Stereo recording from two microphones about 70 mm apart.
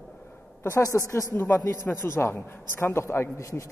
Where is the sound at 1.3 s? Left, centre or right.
Left.